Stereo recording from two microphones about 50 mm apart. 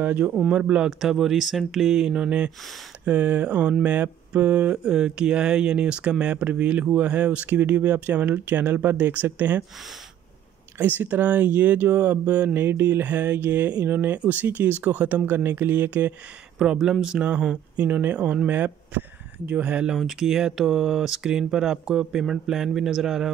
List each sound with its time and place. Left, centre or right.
0.0 s speech: right
0.8 s speech: centre; by 4.7 s right
4.8 s speech: centre; by 9.7 s right
10.8 s speech: right
12.5 s mantra: right
13.8 s speech: right
15.2 s speech: right
16.5 s speech: centre
17.7 s speech: right
19.4 s speech: right
20.1 s speech: centre